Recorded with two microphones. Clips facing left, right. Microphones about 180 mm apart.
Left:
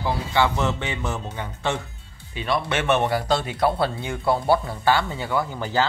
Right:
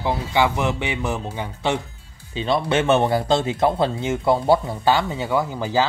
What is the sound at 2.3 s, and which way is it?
Speech, 25° right (ahead or behind).